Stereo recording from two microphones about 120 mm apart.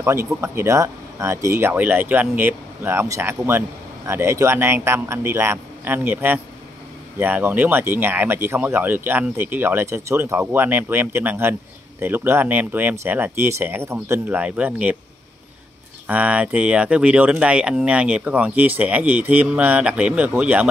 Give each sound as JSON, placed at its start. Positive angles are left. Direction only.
{"t": 0.0, "sound": "speech", "side_deg": -20}
{"t": 16.1, "sound": "speech", "side_deg": -10}